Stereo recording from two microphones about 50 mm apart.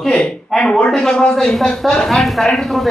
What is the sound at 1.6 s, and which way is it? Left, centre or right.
Speech, centre.